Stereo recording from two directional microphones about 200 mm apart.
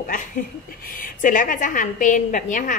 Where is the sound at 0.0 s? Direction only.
40° left (ahead or behind).